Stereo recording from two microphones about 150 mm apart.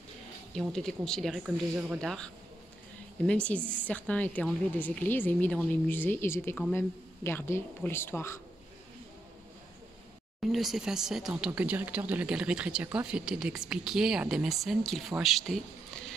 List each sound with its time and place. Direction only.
0.6 s speech: 5° left (ahead or behind)
2.0 s speech: 5° left (ahead or behind)
10.4 s speech: centre (ahead or behind)